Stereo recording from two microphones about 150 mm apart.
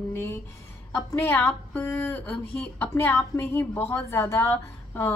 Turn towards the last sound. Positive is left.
turn(degrees=15)  # may be behind; listen again after turning